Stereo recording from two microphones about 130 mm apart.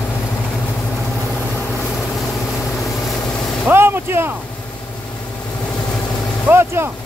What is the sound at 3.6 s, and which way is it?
Vehicle, 15° right (ahead or behind).